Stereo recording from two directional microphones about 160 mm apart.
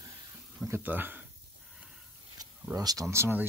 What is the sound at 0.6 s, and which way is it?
Speech, 10° right (ahead or behind).